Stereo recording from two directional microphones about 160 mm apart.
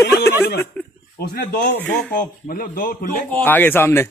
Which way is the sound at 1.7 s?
10° left (ahead or behind).